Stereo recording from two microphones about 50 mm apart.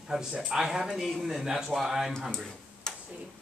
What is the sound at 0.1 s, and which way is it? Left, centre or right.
Speech, centre.